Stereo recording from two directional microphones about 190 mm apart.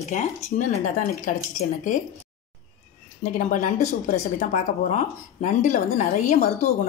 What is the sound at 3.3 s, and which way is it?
A woman's voice, 40° left (ahead or behind).